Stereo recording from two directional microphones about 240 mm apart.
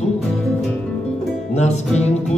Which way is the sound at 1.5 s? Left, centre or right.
Left.